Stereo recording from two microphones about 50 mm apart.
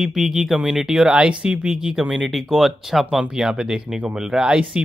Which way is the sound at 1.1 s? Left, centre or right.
Right.